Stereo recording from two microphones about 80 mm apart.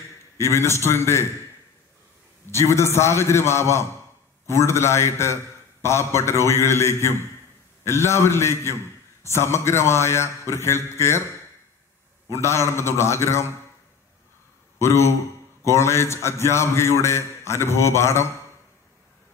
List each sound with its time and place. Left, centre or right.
0.4 s a man's voice: left
2.5 s a man's voice: left
12.3 s a man's voice: left
14.8 s a man's voice: left